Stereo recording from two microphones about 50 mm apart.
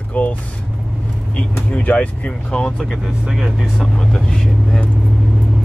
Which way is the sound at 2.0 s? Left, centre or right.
Left.